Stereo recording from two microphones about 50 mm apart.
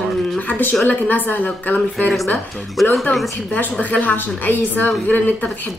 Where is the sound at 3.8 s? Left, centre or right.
Left.